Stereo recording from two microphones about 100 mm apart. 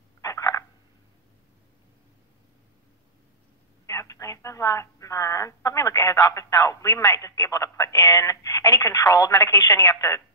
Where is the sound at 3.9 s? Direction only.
30° left (ahead or behind).